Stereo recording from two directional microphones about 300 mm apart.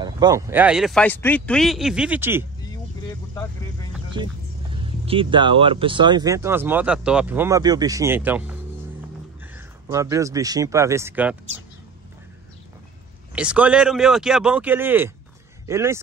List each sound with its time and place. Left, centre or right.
0.0 s speech: centre
4.2 s speech: centre
9.8 s speech: centre
13.3 s speech: centre